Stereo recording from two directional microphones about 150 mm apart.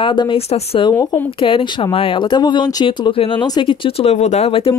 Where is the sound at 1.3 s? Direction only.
35° left (ahead or behind).